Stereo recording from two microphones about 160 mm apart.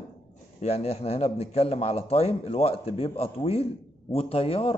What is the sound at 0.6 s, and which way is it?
A man's voice, 40° left (ahead or behind).